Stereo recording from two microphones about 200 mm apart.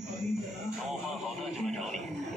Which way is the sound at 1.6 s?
Centre (ahead or behind).